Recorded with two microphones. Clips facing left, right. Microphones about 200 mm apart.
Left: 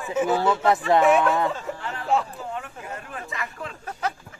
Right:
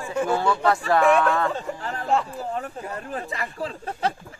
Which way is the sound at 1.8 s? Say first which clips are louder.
Even; 40° right (ahead or behind).